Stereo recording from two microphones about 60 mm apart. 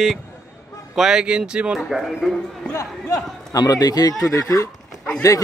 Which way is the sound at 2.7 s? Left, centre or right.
Left.